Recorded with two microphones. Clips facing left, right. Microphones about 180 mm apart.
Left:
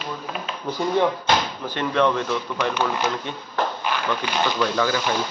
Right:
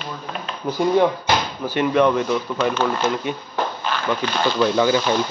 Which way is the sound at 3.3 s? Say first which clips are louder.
Right 6 dB; 10° right (ahead or behind).